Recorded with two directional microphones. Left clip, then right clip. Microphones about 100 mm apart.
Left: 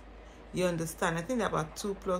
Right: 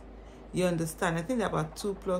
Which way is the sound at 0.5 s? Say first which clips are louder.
Right 2 dB; 20° right (ahead or behind).